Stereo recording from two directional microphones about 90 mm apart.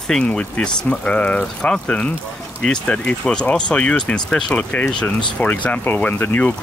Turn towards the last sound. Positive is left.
turn(degrees=20)  # may be behind; listen again after turning